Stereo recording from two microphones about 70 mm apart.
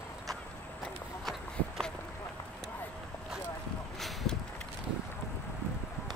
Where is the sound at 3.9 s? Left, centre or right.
Centre.